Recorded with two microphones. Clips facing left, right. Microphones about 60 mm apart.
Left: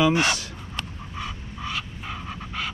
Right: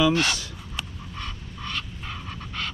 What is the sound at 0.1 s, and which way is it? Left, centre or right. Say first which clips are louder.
Speech: left 2 dB; centre.